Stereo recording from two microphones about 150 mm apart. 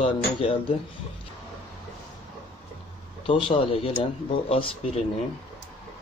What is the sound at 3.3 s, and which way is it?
Speech, 35° left (ahead or behind).